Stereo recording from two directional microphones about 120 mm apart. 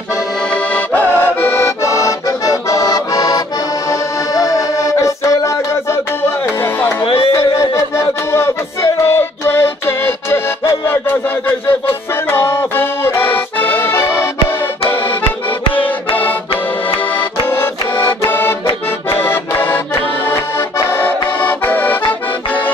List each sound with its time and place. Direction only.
0.7 s accordion: 15° left (ahead or behind); by 3.4 s 30° left (ahead or behind)
4.4 s music: 30° left (ahead or behind)
7.3 s music: 25° left (ahead or behind)
12.3 s accordion: 20° left (ahead or behind)
15.7 s music: 50° left (ahead or behind)
17.5 s music: 20° left (ahead or behind)
19.1 s accordion: 15° left (ahead or behind)
21.0 s accordion: 15° left (ahead or behind)